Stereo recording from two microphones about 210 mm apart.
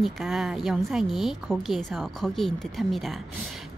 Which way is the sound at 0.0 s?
Centre (ahead or behind).